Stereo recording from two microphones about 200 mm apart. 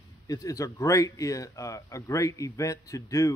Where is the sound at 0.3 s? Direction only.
15° left (ahead or behind).